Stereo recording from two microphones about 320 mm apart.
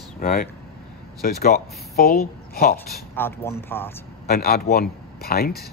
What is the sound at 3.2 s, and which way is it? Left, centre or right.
Speech, centre.